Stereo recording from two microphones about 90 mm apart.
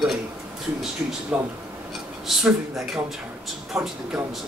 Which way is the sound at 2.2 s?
5° right (ahead or behind).